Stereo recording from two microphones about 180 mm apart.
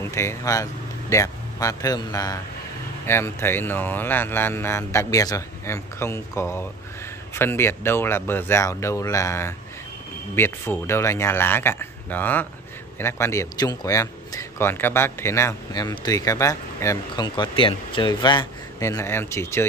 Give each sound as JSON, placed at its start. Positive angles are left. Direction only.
{"t": 0.0, "sound": "a man's voice", "side_deg": 15}